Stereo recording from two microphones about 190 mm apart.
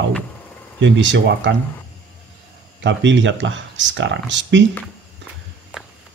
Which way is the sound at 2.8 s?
70° right (ahead or behind).